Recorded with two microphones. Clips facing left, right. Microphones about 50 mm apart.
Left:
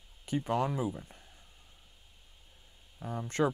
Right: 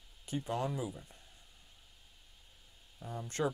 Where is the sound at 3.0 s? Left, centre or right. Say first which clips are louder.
Left 5 dB; left.